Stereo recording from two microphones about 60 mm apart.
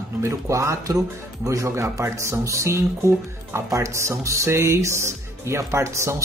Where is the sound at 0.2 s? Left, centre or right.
Right.